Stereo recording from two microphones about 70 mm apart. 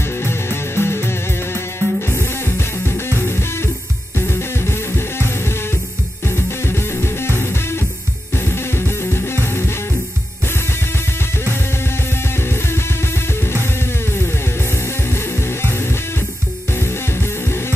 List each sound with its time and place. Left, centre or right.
0.2 s music: left
12.4 s music: left
15.0 s music: left
16.7 s music: left